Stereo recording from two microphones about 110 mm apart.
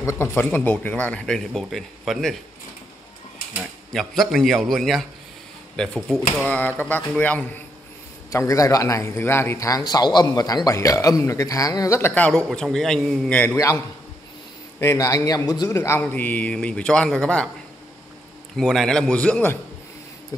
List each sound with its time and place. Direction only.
0.0 s speech: 20° left (ahead or behind); by 2.3 s centre (ahead or behind)
3.9 s a man's voice: centre (ahead or behind)
8.3 s a man's voice: 30° left (ahead or behind)
12.1 s a man's voice: 10° left (ahead or behind)
13.3 s speech: 15° left (ahead or behind)
13.6 s a man's voice: 30° left (ahead or behind)
15.8 s speech: 20° left (ahead or behind)
18.6 s speech: 5° left (ahead or behind)